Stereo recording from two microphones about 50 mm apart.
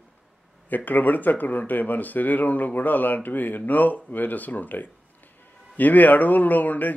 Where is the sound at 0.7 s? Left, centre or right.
Left.